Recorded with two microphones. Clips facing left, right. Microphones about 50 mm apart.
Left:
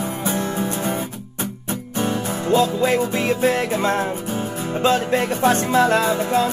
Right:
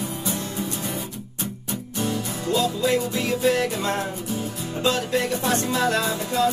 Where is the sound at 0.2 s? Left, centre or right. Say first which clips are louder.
Left 6 dB; left.